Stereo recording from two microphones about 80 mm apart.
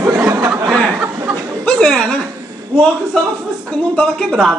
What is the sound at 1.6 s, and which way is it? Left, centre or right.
Speech, centre.